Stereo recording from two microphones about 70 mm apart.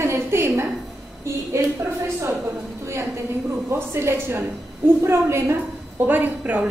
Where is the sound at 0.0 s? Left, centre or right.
Right.